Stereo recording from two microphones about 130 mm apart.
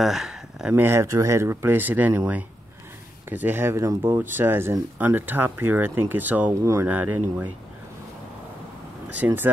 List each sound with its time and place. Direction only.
0.0 s speech: 5° right (ahead or behind)
9.1 s speech: 15° right (ahead or behind)